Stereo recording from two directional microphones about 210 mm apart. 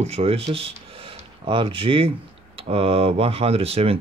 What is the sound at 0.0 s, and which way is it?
Speech, 30° right (ahead or behind).